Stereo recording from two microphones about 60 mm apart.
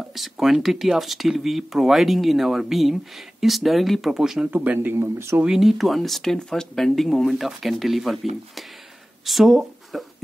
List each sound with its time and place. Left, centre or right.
0.1 s speech: centre
4.5 s speech: right
4.8 s speech: right
5.4 s speech: centre